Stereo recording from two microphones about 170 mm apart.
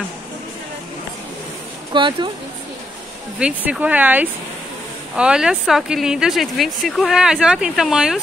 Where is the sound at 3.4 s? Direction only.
5° right (ahead or behind).